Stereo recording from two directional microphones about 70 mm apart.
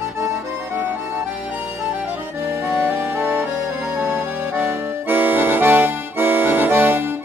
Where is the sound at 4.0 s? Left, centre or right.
Right.